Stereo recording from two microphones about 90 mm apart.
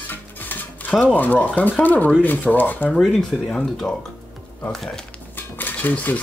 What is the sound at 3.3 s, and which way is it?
Speech, 5° right (ahead or behind).